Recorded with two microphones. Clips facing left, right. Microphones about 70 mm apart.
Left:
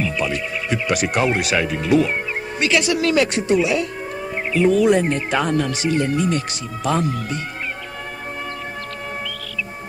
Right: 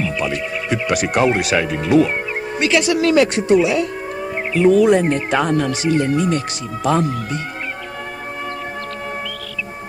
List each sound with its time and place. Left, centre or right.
0.0 s speech: right